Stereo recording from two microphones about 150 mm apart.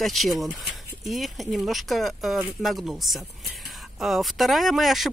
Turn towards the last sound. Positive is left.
turn(degrees=0)  # may be behind; listen again after turning